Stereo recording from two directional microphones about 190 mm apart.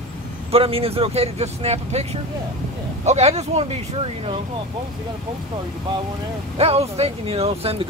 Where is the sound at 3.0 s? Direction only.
35° right (ahead or behind).